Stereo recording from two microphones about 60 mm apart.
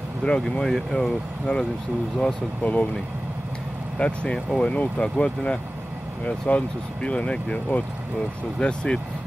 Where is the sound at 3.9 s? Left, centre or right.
Centre.